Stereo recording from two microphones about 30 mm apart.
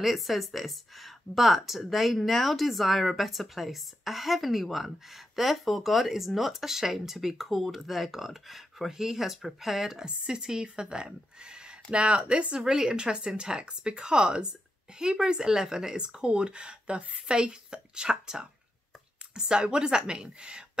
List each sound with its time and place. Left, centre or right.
0.0 s speech: centre
10.0 s speech: right
19.5 s speech: right